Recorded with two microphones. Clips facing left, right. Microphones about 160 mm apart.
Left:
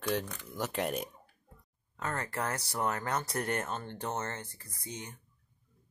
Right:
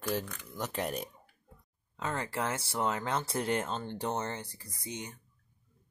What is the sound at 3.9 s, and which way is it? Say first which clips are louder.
Speech: right 3 dB; 10° right (ahead or behind).